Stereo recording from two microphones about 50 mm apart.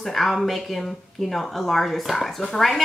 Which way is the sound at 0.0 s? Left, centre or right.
Centre.